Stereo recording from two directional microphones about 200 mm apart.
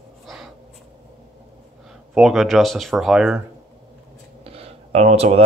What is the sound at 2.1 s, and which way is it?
Speech, centre (ahead or behind).